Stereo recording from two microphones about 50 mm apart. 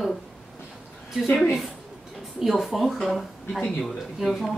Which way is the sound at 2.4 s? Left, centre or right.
Centre.